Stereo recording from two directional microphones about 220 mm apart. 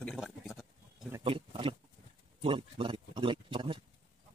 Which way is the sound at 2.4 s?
25° right (ahead or behind).